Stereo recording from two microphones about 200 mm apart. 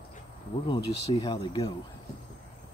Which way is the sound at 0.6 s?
25° left (ahead or behind).